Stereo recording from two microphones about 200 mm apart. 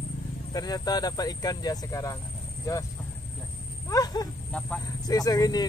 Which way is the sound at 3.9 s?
20° left (ahead or behind).